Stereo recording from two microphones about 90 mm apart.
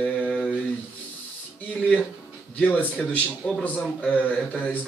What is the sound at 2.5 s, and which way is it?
A man's voice, 15° left (ahead or behind).